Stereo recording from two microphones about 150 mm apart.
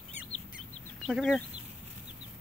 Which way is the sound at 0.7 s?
5° left (ahead or behind).